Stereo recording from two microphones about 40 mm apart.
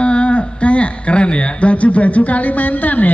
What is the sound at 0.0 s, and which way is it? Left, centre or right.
Speech, left.